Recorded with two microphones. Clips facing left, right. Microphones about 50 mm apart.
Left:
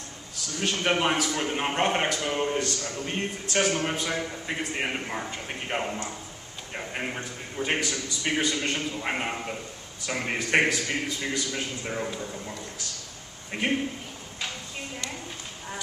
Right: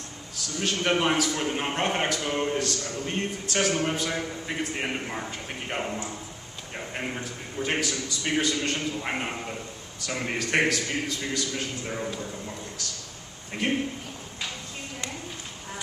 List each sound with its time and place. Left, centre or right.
0.6 s a man's voice: centre
6.7 s a sound: centre
7.2 s a man's voice: centre